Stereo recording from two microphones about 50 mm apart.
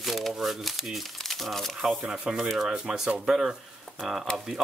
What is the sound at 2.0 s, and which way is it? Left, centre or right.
Speech, centre.